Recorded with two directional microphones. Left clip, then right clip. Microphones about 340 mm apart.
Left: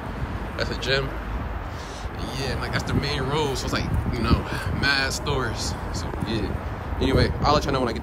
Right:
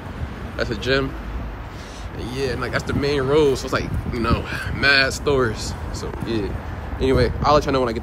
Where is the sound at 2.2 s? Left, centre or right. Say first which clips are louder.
Right 5 dB; centre.